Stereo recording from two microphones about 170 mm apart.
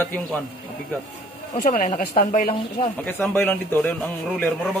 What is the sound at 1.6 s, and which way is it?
Speech, 50° left (ahead or behind).